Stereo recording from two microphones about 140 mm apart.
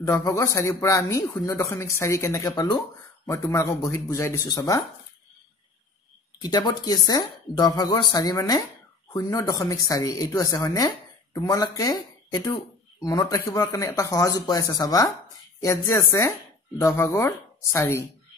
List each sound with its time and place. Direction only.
0.0 s a man's voice: 20° left (ahead or behind)
6.4 s a man's voice: 30° left (ahead or behind)